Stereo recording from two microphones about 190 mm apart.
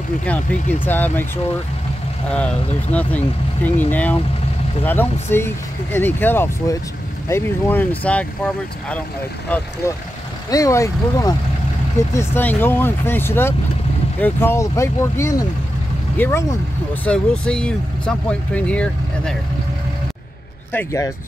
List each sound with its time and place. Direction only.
0.2 s speech: 5° left (ahead or behind)
9.5 s speech: 10° left (ahead or behind)
20.7 s speech: 15° left (ahead or behind)